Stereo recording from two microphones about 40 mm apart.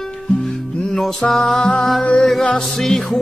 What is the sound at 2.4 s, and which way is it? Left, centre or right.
Music, left.